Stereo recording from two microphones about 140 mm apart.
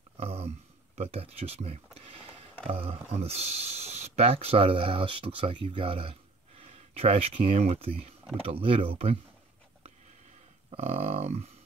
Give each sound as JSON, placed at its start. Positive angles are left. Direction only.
{"t": 0.2, "sound": "a sound", "side_deg": -45}
{"t": 1.1, "sound": "speech", "side_deg": -45}
{"t": 10.7, "sound": "speech", "side_deg": -50}